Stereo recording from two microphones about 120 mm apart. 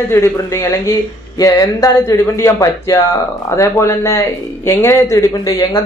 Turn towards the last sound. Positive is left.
turn(degrees=30)  # may be behind; listen again after turning